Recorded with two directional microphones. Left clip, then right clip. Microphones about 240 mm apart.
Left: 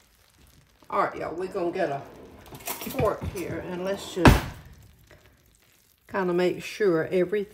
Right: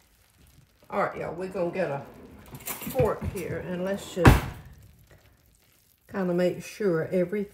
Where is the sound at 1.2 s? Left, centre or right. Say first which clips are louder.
Left 2 dB; left.